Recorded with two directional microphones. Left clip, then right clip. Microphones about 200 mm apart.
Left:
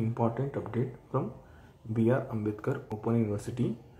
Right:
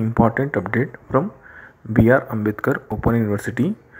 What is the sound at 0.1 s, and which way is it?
Speech, 25° right (ahead or behind).